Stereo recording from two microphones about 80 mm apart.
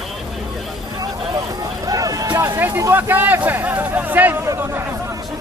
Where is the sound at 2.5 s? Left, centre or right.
Right.